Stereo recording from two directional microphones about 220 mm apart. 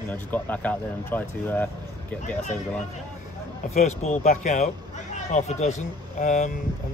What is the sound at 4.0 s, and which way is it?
Speech, 30° left (ahead or behind).